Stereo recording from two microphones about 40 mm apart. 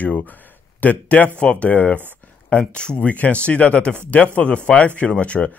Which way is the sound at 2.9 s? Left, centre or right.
Left.